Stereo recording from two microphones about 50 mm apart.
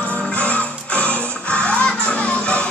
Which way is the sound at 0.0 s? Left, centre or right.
Left.